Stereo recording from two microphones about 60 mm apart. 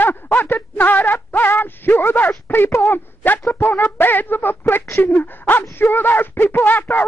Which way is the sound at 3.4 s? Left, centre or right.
Left.